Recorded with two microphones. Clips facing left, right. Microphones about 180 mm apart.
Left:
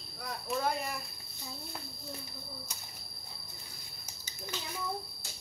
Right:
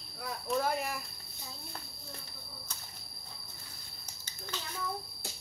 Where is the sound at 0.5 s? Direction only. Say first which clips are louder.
Right 1 dB; centre (ahead or behind).